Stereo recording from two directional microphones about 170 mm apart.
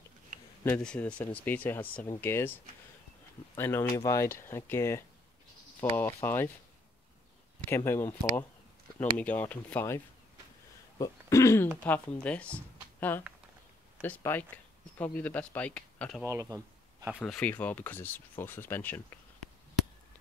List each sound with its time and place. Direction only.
0.7 s speech: 5° left (ahead or behind)
3.5 s speech: 15° left (ahead or behind)
7.7 s speech: 15° left (ahead or behind)
16.3 s speech: 20° right (ahead or behind)
17.2 s speech: 10° left (ahead or behind)